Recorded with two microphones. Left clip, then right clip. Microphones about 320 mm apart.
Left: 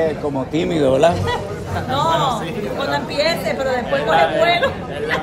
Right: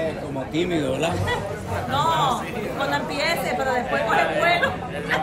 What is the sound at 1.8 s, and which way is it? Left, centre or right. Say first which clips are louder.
Speech: left 3 dB; centre.